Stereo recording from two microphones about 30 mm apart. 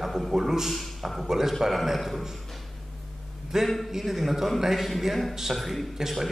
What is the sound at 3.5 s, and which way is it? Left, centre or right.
A man's voice, centre.